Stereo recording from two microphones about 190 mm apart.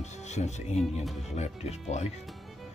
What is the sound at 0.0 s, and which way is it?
Speech, 35° left (ahead or behind).